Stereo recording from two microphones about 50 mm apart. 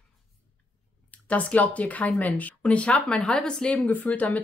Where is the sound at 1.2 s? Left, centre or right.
Left.